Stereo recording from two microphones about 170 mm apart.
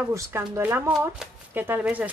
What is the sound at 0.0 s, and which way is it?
Speech, 15° right (ahead or behind).